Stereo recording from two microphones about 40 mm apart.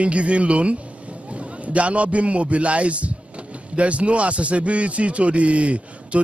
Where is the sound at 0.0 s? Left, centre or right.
Right.